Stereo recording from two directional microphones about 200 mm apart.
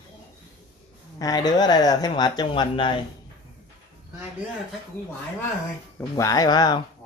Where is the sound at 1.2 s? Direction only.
20° left (ahead or behind).